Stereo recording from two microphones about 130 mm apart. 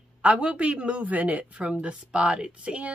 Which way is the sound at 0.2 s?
10° right (ahead or behind).